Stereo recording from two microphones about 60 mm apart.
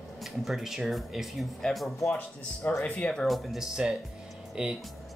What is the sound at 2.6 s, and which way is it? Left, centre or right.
Speech, left.